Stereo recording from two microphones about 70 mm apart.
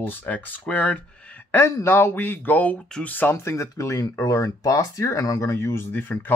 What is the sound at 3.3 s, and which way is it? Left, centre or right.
Speech, left.